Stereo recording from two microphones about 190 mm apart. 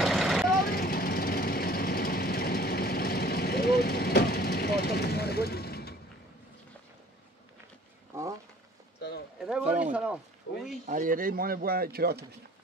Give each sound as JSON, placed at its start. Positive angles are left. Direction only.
{"t": 0.0, "sound": "vehicle", "side_deg": 0}
{"t": 0.5, "sound": "vehicle", "side_deg": 50}
{"t": 9.4, "sound": "a sound", "side_deg": -5}
{"t": 10.9, "sound": "speech", "side_deg": -45}